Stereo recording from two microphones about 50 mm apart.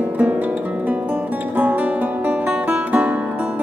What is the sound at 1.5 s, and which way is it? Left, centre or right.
Music, right.